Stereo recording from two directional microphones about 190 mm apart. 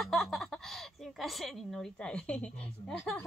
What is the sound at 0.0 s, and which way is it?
Speech, centre (ahead or behind).